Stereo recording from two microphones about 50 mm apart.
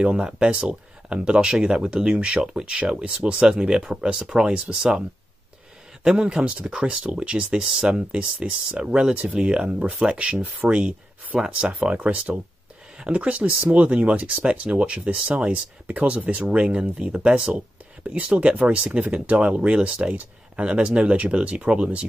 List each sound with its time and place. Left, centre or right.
0.0 s speech: centre
6.0 s speech: centre
11.8 s speech: right